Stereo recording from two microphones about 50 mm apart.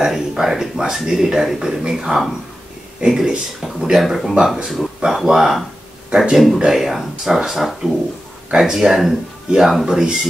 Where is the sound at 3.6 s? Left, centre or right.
Centre.